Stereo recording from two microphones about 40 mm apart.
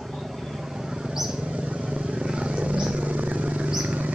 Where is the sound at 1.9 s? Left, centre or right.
Right.